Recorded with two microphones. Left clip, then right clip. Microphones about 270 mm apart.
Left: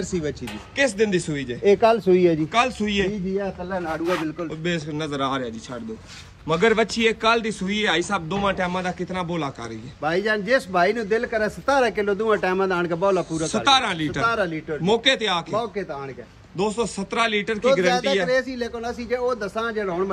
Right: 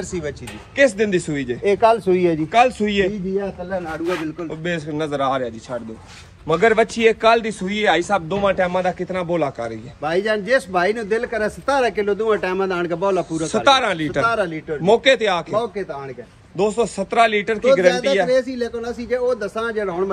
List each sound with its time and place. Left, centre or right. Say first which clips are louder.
0.7 s a man's voice: right 4 dB; centre
1.6 s speech: right 1 dB; right
2.5 s a man's voice: right 6 dB; centre
17.8 s a man's voice: right 4 dB; left; by 20.1 s centre